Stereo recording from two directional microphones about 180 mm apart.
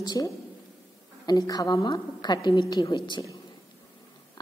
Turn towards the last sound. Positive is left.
turn(degrees=20)  # may be behind; listen again after turning